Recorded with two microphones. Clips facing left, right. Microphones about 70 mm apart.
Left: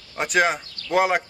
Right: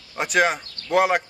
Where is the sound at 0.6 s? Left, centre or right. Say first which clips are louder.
Left 1 dB; right.